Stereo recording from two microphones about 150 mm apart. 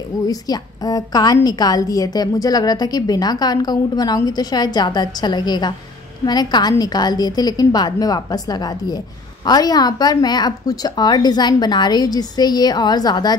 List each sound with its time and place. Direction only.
0.3 s a woman's voice: 25° left (ahead or behind)